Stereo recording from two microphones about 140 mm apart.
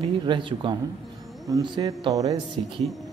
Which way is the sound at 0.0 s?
35° right (ahead or behind).